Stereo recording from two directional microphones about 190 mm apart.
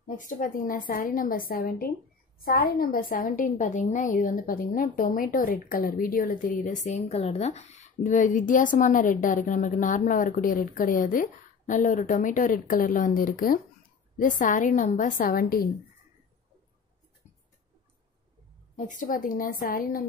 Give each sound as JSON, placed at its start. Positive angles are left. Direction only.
{"t": 0.2, "sound": "a woman's voice", "side_deg": 45}
{"t": 18.9, "sound": "a woman's voice", "side_deg": 45}